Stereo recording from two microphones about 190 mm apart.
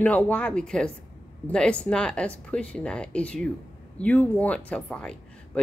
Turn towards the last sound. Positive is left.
turn(degrees=5)  # may be behind; listen again after turning